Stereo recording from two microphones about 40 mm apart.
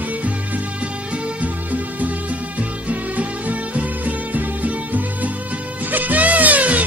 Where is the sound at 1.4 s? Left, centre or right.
Right.